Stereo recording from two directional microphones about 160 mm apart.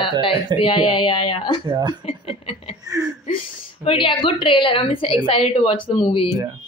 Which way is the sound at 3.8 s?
35° left (ahead or behind).